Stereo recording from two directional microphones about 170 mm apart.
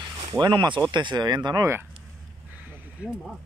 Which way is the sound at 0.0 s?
25° right (ahead or behind).